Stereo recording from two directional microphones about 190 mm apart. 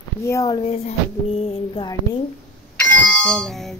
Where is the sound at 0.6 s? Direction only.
35° left (ahead or behind).